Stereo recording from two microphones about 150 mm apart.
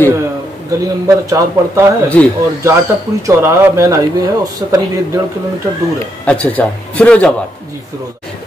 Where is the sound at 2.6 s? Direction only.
20° right (ahead or behind).